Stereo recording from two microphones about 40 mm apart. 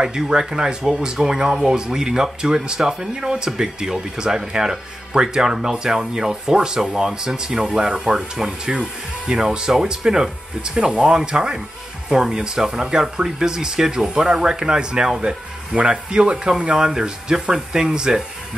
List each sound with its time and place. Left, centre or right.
0.0 s speech: centre